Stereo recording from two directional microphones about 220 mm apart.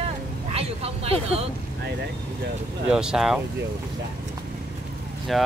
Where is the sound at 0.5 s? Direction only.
25° right (ahead or behind).